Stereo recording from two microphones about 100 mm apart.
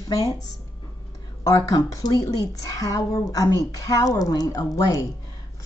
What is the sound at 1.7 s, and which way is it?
Speech, 35° left (ahead or behind).